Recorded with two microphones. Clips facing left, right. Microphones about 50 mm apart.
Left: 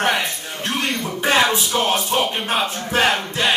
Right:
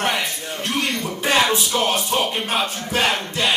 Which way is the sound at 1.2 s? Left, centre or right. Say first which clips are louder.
Left 1 dB; centre.